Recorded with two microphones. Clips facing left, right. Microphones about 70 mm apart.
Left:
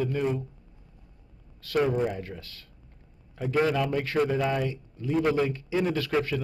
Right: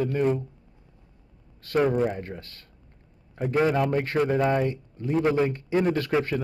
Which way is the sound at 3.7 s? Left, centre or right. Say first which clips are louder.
Right 2 dB; right.